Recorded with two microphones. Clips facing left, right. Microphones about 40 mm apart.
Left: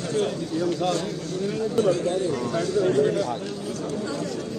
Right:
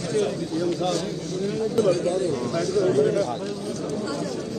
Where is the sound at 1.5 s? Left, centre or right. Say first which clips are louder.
Right 1 dB; left.